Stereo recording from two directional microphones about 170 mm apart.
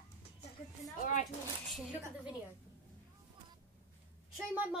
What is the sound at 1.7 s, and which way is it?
Speech, 5° right (ahead or behind).